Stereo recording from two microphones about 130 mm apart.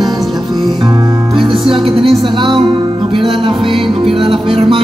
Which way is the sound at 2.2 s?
35° right (ahead or behind).